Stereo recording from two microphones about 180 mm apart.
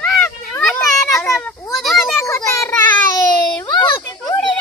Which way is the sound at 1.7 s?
Centre (ahead or behind).